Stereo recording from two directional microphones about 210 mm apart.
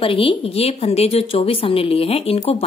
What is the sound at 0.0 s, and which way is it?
A woman's voice, 25° left (ahead or behind).